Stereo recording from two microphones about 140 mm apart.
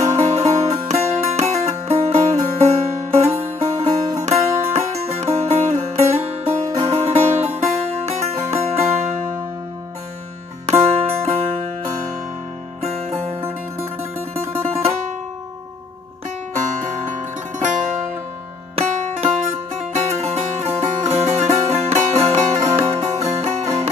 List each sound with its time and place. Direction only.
0.2 s music: 50° right (ahead or behind)
10.7 s music: 50° right (ahead or behind)
12.8 s music: 50° right (ahead or behind)
14.6 s music: 45° right (ahead or behind)
18.8 s music: 45° right (ahead or behind)